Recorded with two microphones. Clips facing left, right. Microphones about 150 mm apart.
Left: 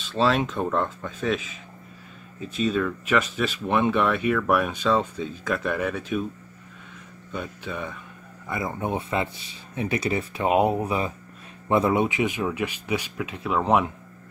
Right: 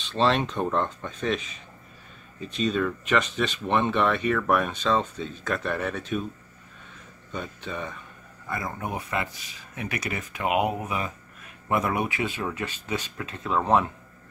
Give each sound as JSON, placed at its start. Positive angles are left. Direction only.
{"t": 0.0, "sound": "speech", "side_deg": 5}
{"t": 7.3, "sound": "speech", "side_deg": 10}
{"t": 8.5, "sound": "speech", "side_deg": 20}